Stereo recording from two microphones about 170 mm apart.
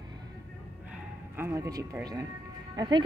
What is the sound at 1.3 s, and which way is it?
Speech, 15° right (ahead or behind).